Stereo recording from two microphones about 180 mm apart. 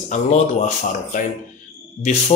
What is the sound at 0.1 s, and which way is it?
Speech, 40° left (ahead or behind).